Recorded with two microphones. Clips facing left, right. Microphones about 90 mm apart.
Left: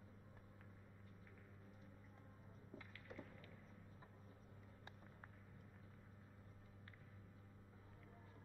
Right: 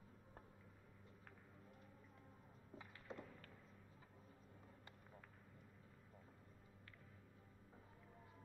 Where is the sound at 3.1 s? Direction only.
25° right (ahead or behind).